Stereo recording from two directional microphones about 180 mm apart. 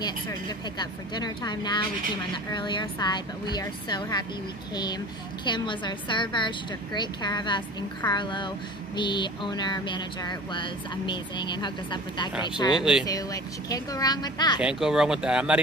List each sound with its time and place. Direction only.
0.0 s speech: 20° left (ahead or behind)
5.4 s speech: 25° left (ahead or behind)
14.6 s speech: 5° right (ahead or behind)